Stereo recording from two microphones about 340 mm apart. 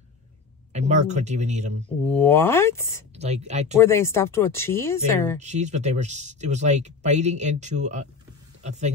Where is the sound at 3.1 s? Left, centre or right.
Centre.